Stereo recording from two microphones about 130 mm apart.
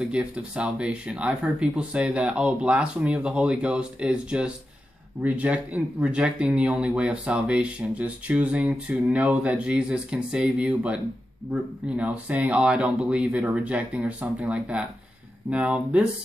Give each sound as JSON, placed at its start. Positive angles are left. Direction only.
{"t": 0.0, "sound": "speech", "side_deg": -10}
{"t": 12.0, "sound": "speech", "side_deg": -10}